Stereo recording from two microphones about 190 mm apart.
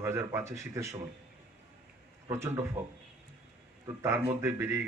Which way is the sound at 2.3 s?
15° right (ahead or behind).